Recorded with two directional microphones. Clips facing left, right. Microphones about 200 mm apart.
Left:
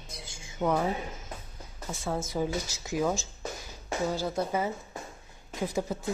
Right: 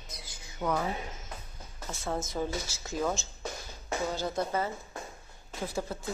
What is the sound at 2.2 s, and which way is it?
Speech, 10° left (ahead or behind).